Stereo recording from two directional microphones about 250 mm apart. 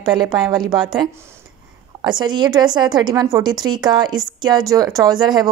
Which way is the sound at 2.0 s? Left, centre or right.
Centre.